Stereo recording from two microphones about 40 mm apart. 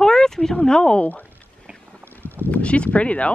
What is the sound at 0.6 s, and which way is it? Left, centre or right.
Speech, left.